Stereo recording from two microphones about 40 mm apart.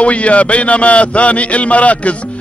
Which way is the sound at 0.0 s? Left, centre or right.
Left.